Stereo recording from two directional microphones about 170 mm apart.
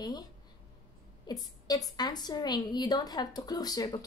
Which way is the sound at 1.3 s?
25° left (ahead or behind).